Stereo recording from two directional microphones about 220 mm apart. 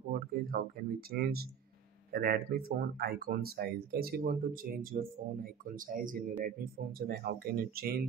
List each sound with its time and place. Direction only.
0.1 s speech: 45° right (ahead or behind)